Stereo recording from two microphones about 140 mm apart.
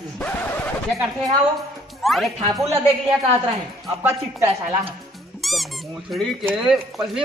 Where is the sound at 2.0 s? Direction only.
Centre (ahead or behind).